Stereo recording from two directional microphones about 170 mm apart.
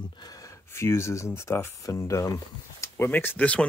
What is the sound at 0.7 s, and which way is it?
Speech, 15° left (ahead or behind).